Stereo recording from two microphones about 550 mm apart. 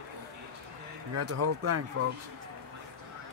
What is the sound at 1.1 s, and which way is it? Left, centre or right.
Speech, right.